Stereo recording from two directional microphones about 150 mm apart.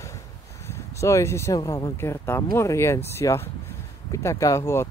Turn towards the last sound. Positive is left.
turn(degrees=20)  # may be behind; listen again after turning